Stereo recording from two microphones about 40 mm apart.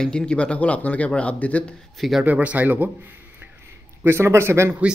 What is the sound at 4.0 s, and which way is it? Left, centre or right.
Speech, right.